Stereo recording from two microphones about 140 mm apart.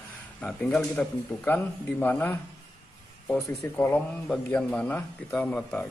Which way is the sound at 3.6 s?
15° left (ahead or behind).